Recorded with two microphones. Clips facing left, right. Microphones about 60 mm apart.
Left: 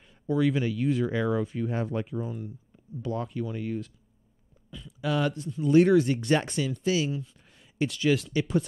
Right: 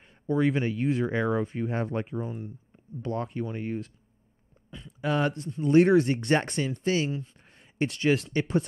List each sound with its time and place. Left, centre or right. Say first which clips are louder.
0.0 s speech: even; right
4.6 s a sound: right 1 dB; right
5.3 s speech: left 1 dB; right